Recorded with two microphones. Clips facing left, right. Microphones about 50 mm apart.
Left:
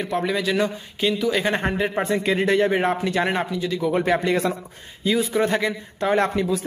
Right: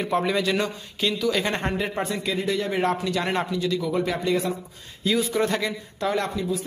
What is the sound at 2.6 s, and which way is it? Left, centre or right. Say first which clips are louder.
Speech: left 4 dB; left.